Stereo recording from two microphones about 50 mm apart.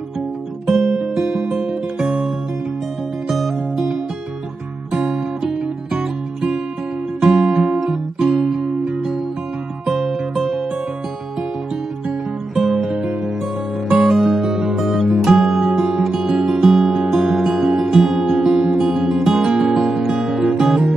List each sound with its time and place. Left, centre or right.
0.7 s guitar: centre
1.0 s music: centre
3.3 s music: centre
5.0 s music: centre
7.2 s guitar: centre
8.8 s music: centre
12.5 s music: centre
12.9 s music: centre